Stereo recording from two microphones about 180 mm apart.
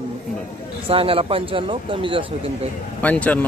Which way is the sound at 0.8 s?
30° right (ahead or behind).